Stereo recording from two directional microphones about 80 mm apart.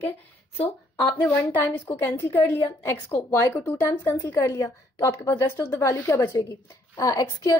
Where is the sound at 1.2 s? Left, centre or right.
Left.